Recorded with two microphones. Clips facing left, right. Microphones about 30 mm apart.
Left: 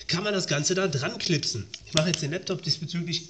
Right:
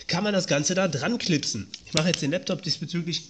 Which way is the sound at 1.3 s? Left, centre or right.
Right.